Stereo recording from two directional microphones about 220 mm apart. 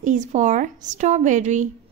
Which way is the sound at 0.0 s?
35° right (ahead or behind).